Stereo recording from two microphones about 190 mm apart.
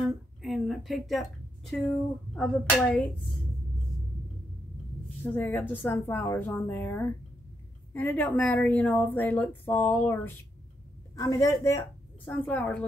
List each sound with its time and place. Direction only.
0.0 s a sound: centre (ahead or behind)
2.6 s a woman's voice: 10° left (ahead or behind)
5.2 s a woman's voice: 5° left (ahead or behind)